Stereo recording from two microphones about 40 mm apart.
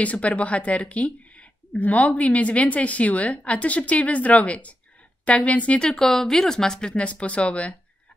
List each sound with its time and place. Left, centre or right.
0.0 s a woman's voice: left
5.9 s a woman's voice: centre
7.0 s a woman's voice: left